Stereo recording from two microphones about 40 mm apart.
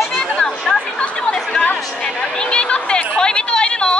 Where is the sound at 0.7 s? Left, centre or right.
Centre.